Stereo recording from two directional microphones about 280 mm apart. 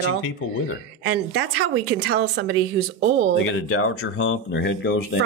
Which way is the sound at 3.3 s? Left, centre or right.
Left.